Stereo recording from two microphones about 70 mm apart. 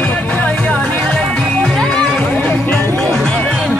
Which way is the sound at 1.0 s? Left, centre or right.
Centre.